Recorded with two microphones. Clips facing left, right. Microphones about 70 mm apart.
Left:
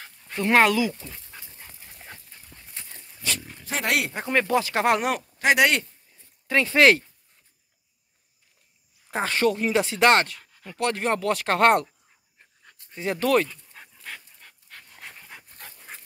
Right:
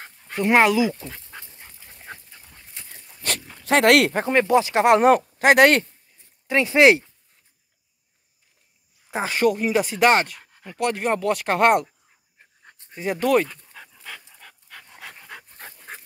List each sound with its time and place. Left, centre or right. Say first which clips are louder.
0.2 s speech: right 2 dB; centre
3.2 s dog: right 2 dB; right
3.6 s speech: right 10 dB; right
4.3 s speech: right 2 dB; right
5.4 s speech: right 3 dB; right
6.4 s speech: right 3 dB; centre
9.1 s speech: right 2 dB; centre
12.6 s pant: right 4 dB; right
12.9 s speech: right 2 dB; centre
13.7 s dog: right 5 dB; right
15.0 s dog: right 4 dB; right